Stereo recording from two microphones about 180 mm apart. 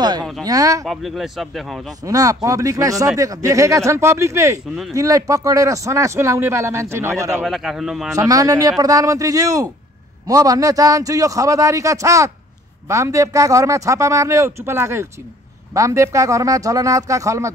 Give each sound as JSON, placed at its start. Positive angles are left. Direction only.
{"t": 0.4, "sound": "a man's voice", "side_deg": -20}
{"t": 0.8, "sound": "speech", "side_deg": 0}
{"t": 2.0, "sound": "a man's voice", "side_deg": -20}
{"t": 7.4, "sound": "speech", "side_deg": 0}
{"t": 8.2, "sound": "a man's voice", "side_deg": -20}